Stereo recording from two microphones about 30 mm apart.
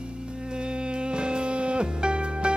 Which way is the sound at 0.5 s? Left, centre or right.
Right.